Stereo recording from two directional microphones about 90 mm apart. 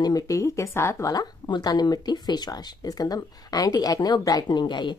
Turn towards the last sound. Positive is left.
turn(degrees=55)  # may be behind; listen again after turning